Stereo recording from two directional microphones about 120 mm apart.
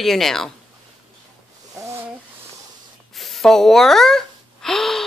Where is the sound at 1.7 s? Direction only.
25° right (ahead or behind).